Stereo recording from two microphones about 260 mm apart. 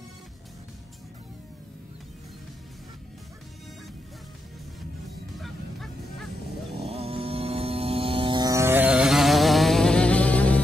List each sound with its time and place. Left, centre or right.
5.3 s honk: centre
6.8 s music: right; by 10.6 s centre